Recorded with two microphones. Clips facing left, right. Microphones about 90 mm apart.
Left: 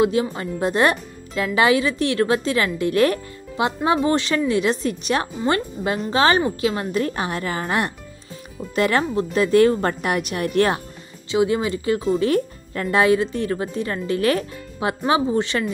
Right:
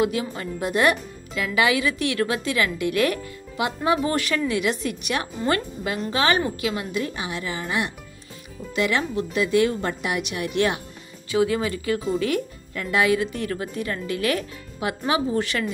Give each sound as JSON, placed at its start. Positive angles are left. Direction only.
{"t": 0.0, "sound": "speech", "side_deg": 30}
{"t": 11.3, "sound": "speech", "side_deg": 25}